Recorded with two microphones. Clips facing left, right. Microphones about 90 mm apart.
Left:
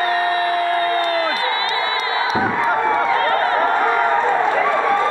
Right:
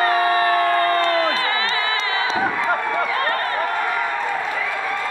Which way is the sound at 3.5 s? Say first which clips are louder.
Left 6 dB; 30° left (ahead or behind).